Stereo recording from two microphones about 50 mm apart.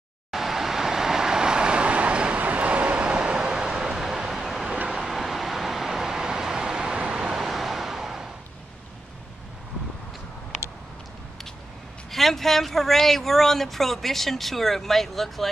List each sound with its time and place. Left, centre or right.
0.3 s vehicle: centre
12.1 s speech: centre